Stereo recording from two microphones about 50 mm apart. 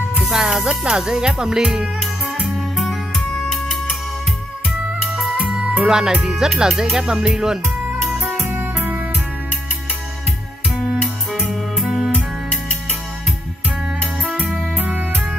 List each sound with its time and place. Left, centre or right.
0.2 s speech: centre
2.5 s music: centre
5.0 s music: centre
5.9 s speech: centre
6.7 s music: centre
7.0 s speech: centre
8.2 s music: right
8.5 s music: right
11.0 s music: centre
14.4 s music: right